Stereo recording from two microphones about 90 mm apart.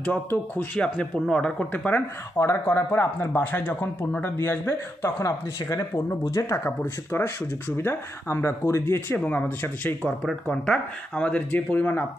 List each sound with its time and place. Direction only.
0.0 s speech: 20° left (ahead or behind)